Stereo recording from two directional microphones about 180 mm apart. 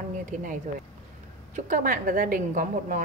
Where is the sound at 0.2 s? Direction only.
45° right (ahead or behind).